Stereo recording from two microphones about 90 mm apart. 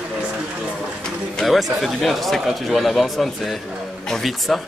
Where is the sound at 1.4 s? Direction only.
Centre (ahead or behind).